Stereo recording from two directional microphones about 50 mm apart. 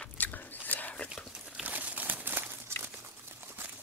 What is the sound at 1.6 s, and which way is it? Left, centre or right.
Crumpling, right.